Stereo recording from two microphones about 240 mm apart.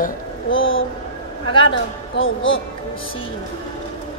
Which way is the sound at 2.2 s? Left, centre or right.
Left.